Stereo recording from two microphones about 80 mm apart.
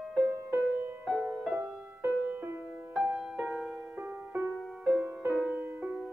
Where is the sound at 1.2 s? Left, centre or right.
Centre.